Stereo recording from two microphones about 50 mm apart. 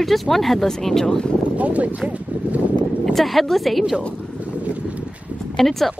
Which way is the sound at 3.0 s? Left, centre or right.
Centre.